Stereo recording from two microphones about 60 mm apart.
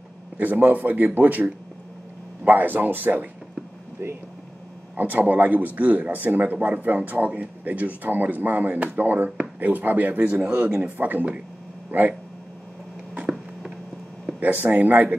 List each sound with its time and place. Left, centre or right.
0.4 s speech: right
4.0 s speech: right
4.9 s speech: right
13.3 s a sound: centre
14.4 s speech: right